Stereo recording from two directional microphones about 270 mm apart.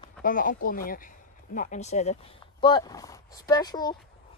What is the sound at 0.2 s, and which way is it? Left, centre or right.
Speech, left.